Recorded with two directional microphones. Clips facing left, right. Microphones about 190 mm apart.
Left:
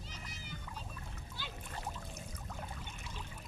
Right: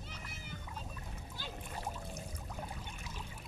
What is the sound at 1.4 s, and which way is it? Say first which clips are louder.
Splash: right 1 dB; 45° right (ahead or behind).